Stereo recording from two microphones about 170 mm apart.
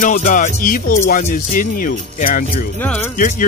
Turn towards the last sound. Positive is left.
turn(degrees=50)  # may be behind; listen again after turning